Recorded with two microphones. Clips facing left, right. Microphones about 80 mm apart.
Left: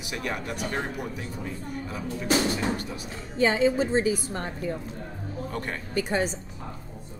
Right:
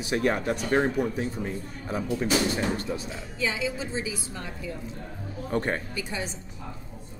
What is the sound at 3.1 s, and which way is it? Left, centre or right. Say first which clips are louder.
A woman's voice: left 6 dB; left.